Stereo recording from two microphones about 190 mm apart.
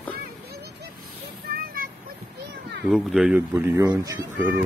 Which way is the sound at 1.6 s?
50° right (ahead or behind).